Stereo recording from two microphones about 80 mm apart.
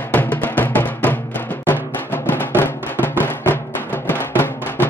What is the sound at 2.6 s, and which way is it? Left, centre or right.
Music, left.